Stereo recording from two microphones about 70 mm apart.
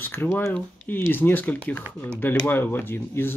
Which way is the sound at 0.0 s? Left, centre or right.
Left.